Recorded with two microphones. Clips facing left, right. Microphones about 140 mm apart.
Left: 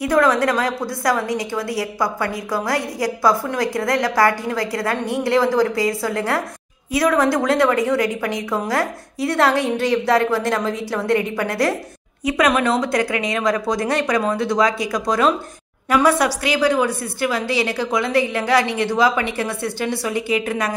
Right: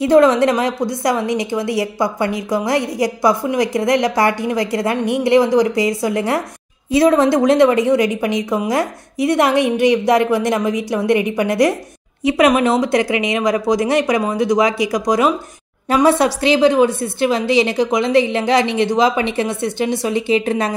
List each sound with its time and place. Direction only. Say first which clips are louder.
0.0 s a woman's voice: right 5 dB; 25° right (ahead or behind)